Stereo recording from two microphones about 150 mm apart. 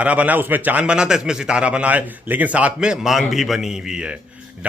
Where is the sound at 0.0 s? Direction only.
10° right (ahead or behind).